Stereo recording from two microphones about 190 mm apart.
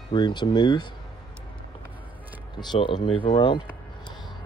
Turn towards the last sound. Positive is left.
turn(degrees=25)  # may be behind; listen again after turning